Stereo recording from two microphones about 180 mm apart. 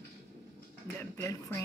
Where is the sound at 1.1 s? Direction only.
15° left (ahead or behind).